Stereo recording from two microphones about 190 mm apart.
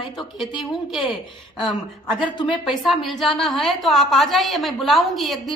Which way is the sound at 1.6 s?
25° left (ahead or behind).